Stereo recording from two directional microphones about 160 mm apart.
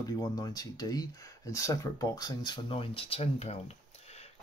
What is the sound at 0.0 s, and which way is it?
Speech, 25° left (ahead or behind).